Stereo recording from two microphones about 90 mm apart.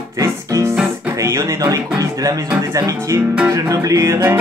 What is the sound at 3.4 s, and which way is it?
Music, 35° right (ahead or behind).